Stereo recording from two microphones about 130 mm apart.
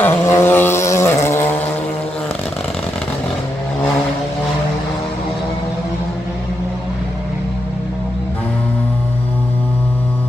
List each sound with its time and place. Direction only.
0.0 s vehicle: 20° left (ahead or behind)